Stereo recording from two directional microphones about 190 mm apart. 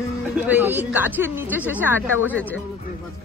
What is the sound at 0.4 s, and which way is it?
Speech, 10° right (ahead or behind).